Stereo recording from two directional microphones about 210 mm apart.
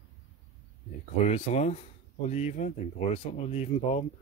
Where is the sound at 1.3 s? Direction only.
30° left (ahead or behind).